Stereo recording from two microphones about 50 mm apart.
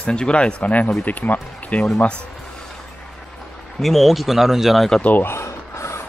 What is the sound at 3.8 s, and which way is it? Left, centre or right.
Speech, centre.